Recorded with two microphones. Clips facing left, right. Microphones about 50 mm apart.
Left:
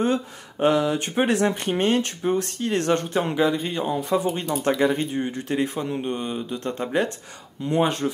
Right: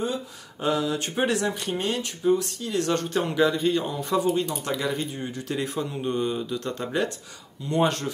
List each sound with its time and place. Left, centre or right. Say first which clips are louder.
0.0 s speech: left 6 dB; left
2.9 s speech: left 2 dB; left